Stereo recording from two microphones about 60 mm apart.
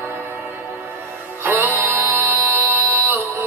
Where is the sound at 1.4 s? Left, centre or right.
Right.